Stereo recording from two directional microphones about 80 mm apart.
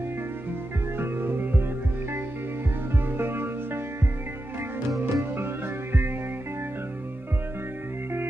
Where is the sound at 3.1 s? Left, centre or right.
Right.